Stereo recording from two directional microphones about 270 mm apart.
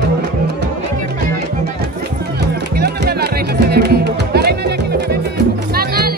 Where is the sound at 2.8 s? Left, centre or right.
Right.